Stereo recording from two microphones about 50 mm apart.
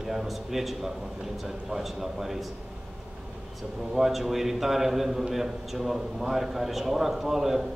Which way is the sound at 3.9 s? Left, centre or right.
Centre.